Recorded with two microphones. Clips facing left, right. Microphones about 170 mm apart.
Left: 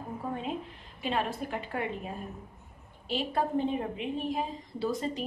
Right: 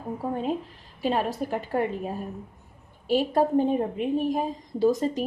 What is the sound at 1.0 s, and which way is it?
A woman's voice, 40° right (ahead or behind).